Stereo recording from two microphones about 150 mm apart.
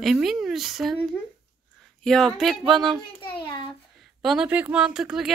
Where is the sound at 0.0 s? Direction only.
Centre (ahead or behind).